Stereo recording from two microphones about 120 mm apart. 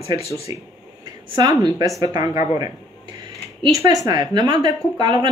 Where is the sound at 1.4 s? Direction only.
30° right (ahead or behind).